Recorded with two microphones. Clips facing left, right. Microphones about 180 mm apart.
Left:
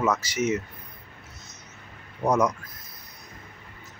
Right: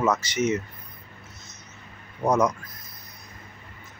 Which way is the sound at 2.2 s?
5° right (ahead or behind).